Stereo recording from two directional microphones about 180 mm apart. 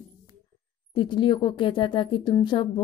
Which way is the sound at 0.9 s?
25° left (ahead or behind).